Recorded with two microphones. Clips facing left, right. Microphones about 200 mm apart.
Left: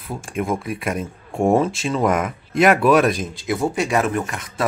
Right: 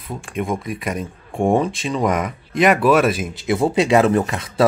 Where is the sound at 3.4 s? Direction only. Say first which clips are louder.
Right 4 dB; 25° right (ahead or behind).